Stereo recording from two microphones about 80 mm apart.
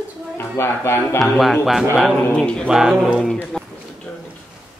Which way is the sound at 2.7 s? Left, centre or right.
Centre.